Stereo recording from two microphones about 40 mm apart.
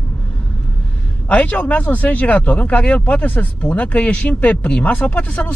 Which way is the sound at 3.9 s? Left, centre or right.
Left.